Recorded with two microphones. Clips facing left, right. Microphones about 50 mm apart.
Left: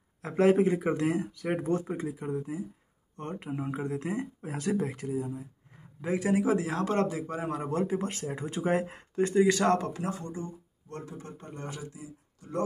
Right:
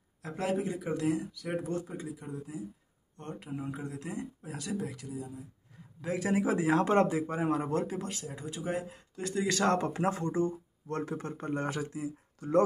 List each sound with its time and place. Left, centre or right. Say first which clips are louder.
0.2 s speech: left 9 dB; left
5.9 s a man's voice: left 3 dB; centre
6.3 s speech: left 1 dB; centre
6.7 s speech: right 3 dB; centre
7.7 s speech: left 3 dB; centre
8.0 s speech: left 5 dB; left
9.3 s speech: left 4 dB; centre
10.1 s speech: right 6 dB; right
10.4 s speech: right 9 dB; right